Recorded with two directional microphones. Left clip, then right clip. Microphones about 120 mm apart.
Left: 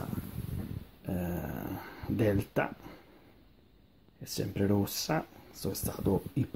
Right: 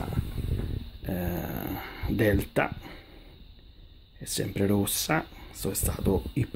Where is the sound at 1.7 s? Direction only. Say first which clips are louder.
Right 5 dB; 30° right (ahead or behind).